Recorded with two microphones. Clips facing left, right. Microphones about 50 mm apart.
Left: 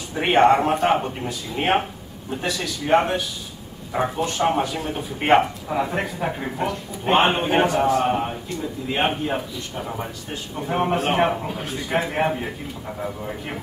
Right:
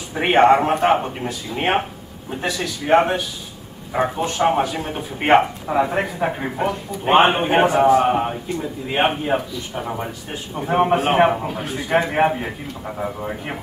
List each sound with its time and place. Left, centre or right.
0.1 s a man's voice: centre
5.9 s a man's voice: centre